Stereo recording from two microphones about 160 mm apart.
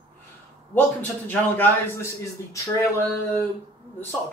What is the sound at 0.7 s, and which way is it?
A man's voice, 10° left (ahead or behind).